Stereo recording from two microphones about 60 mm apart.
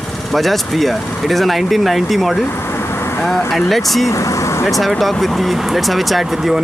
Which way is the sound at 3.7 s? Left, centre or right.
Centre.